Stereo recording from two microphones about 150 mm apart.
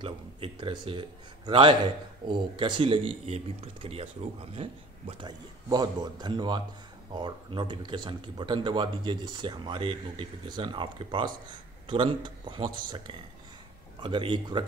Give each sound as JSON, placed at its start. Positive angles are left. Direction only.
{"t": 0.0, "sound": "speech", "side_deg": -35}